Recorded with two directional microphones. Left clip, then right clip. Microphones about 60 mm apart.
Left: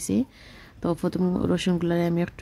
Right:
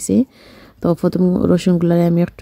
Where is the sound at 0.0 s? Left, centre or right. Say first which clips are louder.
Right 10 dB; right.